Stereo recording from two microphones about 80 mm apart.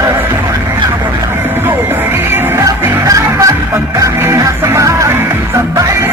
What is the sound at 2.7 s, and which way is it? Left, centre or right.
Music, right.